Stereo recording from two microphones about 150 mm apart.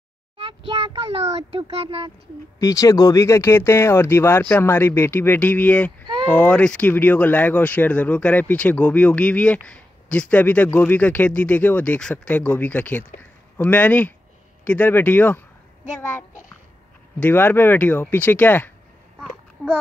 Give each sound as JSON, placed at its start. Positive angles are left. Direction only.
{"t": 0.5, "sound": "speech", "side_deg": -35}
{"t": 2.6, "sound": "speech", "side_deg": 25}